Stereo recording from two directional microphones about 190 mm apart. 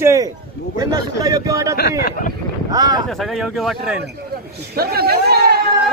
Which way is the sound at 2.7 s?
20° right (ahead or behind).